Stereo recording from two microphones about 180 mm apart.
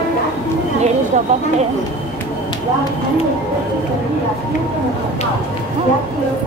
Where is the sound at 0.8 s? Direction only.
40° right (ahead or behind).